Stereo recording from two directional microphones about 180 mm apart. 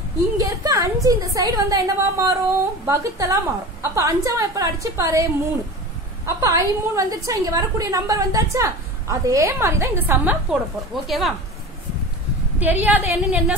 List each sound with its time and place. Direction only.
0.4 s a woman's voice: 20° right (ahead or behind); by 11.3 s centre (ahead or behind)
12.5 s a woman's voice: 10° right (ahead or behind)